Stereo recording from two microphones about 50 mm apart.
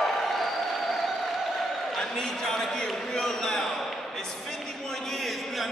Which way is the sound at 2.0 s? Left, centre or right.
Centre.